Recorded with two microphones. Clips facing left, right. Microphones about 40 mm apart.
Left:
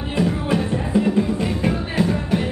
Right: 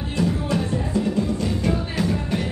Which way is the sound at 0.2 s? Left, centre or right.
Left.